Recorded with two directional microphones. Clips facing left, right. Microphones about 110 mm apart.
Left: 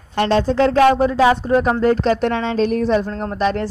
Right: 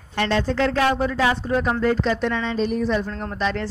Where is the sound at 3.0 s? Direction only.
35° left (ahead or behind).